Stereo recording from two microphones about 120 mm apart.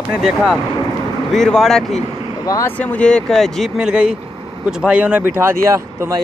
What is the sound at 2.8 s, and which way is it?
Speech, 10° left (ahead or behind).